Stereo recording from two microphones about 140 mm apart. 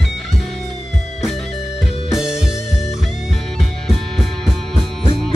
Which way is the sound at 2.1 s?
5° right (ahead or behind).